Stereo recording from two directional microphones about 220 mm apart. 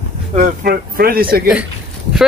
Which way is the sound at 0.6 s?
45° right (ahead or behind).